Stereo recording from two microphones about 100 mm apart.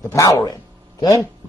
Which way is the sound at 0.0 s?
30° left (ahead or behind).